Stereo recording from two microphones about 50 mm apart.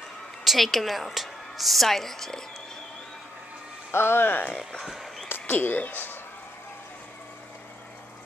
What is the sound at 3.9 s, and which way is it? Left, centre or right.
Speech, left.